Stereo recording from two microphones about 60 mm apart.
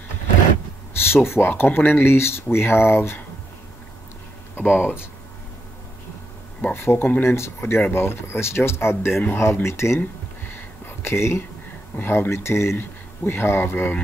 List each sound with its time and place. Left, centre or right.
1.1 s speech: left
4.6 s speech: left
6.7 s speech: left
9.9 s a sound: left
12.0 s speech: left
12.7 s speech: left